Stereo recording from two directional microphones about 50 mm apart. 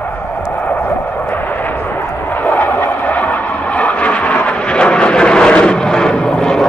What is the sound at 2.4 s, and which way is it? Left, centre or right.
Vehicle, left.